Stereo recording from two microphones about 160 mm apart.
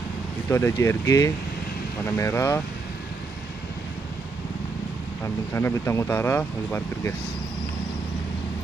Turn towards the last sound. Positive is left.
turn(degrees=15)  # may be behind; listen again after turning